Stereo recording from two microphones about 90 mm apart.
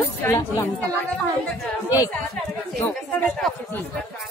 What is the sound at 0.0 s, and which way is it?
Speech, 25° left (ahead or behind).